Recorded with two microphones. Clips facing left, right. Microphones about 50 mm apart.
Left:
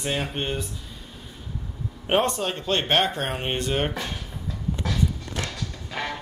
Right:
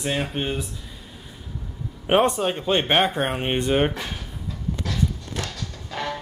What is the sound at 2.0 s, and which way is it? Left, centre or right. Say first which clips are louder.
Speech: right 4 dB; centre.